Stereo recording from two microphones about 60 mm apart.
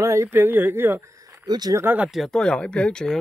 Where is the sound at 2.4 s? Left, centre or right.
Centre.